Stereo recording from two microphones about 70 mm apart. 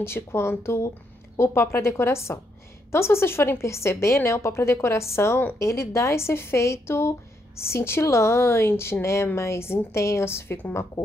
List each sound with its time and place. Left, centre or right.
0.0 s a woman's voice: left